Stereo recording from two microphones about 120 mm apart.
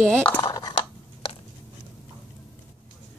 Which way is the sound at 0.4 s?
30° left (ahead or behind).